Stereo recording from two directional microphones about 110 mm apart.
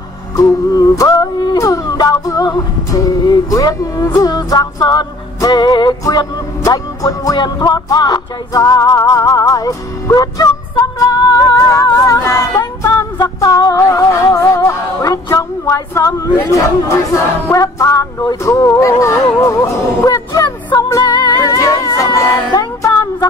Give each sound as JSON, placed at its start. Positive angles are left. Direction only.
{"t": 0.4, "sound": "music", "side_deg": 30}